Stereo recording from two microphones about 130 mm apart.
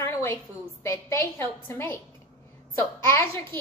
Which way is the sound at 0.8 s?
20° left (ahead or behind).